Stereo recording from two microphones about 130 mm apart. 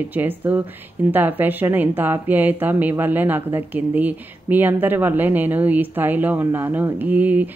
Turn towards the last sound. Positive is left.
turn(degrees=-10)  # may be behind; listen again after turning